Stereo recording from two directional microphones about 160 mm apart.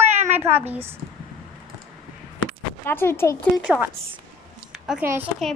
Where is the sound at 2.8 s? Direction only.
15° left (ahead or behind).